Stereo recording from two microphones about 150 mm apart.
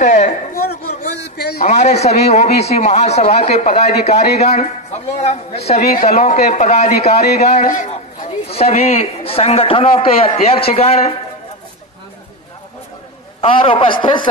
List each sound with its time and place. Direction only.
0.0 s a sound: 55° left (ahead or behind)
1.3 s speech: 90° left
1.6 s a man's voice: 50° left (ahead or behind)
7.2 s speech: 90° left
7.5 s a man's voice: 55° left (ahead or behind)
13.4 s a man's voice: 35° left (ahead or behind)